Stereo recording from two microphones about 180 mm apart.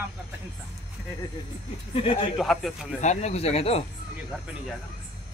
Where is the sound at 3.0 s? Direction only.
40° left (ahead or behind).